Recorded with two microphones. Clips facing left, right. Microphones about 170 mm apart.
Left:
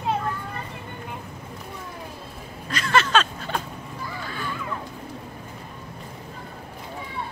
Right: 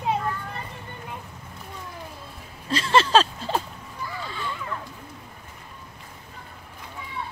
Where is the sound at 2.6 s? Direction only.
30° right (ahead or behind).